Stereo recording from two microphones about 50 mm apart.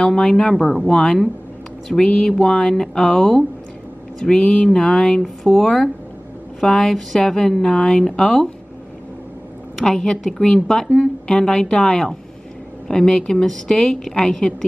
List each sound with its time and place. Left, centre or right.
0.0 s a woman's voice: centre
5.2 s a woman's voice: centre
9.8 s a woman's voice: centre